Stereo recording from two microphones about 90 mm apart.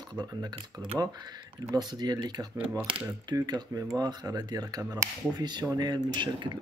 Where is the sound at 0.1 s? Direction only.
45° right (ahead or behind).